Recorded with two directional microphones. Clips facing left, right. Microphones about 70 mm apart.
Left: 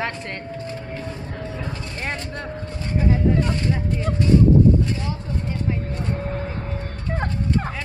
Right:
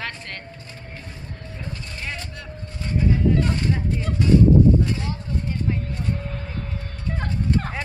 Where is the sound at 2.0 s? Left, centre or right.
Left.